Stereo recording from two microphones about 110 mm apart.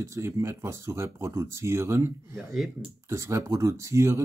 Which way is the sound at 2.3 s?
Centre (ahead or behind).